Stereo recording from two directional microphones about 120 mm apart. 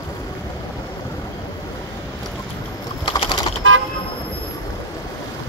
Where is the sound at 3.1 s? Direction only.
40° left (ahead or behind).